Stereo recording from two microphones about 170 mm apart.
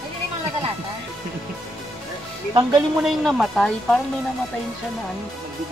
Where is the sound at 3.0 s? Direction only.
Centre (ahead or behind).